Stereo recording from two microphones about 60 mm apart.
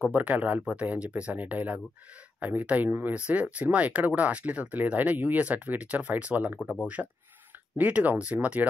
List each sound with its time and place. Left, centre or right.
0.0 s speech: right
6.6 s speech: left
7.7 s speech: right